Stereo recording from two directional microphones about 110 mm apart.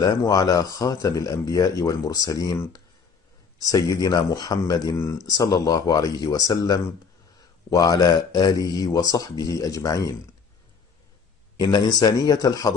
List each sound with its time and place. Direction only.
0.0 s speech: 35° left (ahead or behind)
3.6 s speech: 30° left (ahead or behind)
11.5 s speech: 40° left (ahead or behind)